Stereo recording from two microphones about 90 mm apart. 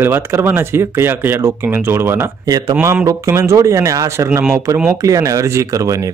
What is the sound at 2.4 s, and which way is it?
Speech, 45° right (ahead or behind).